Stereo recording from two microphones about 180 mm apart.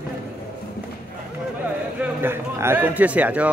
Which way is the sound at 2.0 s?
10° right (ahead or behind).